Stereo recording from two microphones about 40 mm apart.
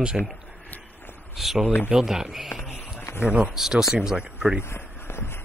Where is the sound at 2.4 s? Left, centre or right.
Centre.